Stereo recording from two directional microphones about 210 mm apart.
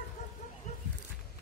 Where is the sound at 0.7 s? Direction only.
35° left (ahead or behind).